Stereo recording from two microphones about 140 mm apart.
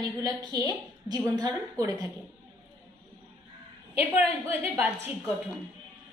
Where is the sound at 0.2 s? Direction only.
30° right (ahead or behind).